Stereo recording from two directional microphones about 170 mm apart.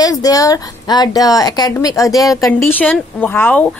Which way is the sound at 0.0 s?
20° left (ahead or behind).